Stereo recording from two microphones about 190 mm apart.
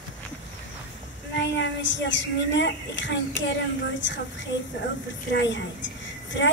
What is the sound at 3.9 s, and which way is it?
A woman's voice, 70° left (ahead or behind).